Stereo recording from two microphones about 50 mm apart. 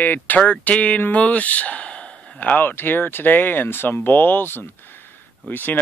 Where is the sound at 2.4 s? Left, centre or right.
Left.